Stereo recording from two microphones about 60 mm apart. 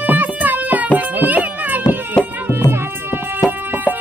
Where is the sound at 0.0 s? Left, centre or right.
Right.